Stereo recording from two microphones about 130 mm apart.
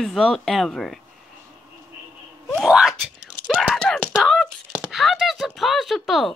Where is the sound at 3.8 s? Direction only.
5° left (ahead or behind).